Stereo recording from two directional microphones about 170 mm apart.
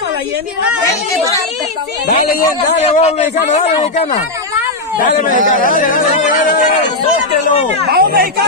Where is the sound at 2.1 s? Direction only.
55° left (ahead or behind).